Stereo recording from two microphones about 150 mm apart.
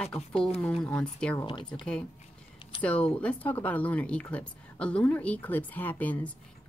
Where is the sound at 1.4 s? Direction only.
35° left (ahead or behind).